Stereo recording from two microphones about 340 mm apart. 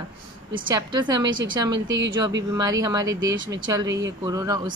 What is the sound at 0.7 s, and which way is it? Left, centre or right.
Speech, centre.